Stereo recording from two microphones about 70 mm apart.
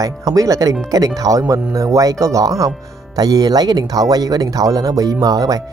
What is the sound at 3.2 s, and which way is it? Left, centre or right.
Speech, right.